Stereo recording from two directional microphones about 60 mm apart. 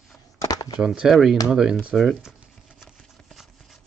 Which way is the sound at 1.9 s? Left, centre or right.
Centre.